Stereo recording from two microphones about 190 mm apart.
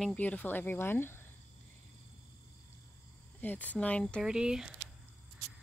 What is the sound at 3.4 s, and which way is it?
Speech, 10° left (ahead or behind).